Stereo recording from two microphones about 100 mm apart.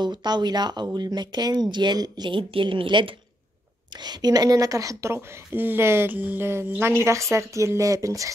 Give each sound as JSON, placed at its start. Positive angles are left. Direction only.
{"t": 0.0, "sound": "speech", "side_deg": -45}
{"t": 4.0, "sound": "a woman's voice", "side_deg": -45}